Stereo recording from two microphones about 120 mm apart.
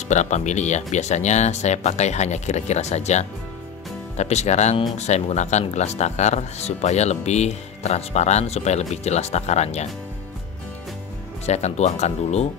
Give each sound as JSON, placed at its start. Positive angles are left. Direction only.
{"t": 0.1, "sound": "speech", "side_deg": 75}
{"t": 11.4, "sound": "speech", "side_deg": 65}